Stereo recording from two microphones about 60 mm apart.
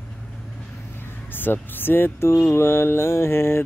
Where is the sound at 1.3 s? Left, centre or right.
Left.